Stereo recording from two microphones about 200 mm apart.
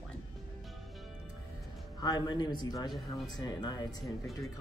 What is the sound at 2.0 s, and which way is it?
Speech, 20° left (ahead or behind).